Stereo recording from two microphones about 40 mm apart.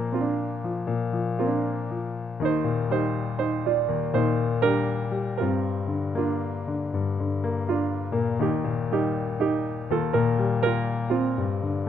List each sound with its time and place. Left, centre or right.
0.1 s music: centre
7.6 s music: centre